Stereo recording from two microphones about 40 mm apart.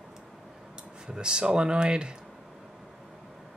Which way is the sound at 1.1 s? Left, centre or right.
Right.